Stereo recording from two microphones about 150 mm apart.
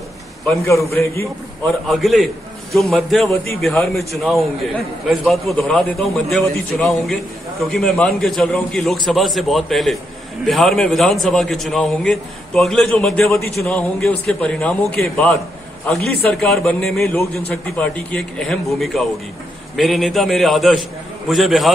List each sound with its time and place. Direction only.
0.7 s a man's voice: 20° left (ahead or behind)
1.9 s a man's voice: centre (ahead or behind)